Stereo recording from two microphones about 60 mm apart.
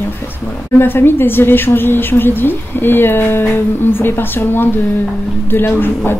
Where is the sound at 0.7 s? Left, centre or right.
Left.